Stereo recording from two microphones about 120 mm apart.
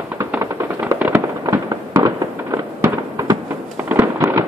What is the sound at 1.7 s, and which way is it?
Fireworks, 30° right (ahead or behind).